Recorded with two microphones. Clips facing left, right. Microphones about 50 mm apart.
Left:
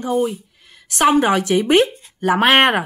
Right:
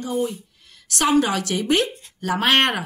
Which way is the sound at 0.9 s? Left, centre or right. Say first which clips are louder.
Left 5 dB; left.